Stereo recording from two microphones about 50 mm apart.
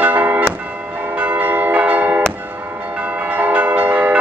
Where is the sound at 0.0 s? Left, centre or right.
Right.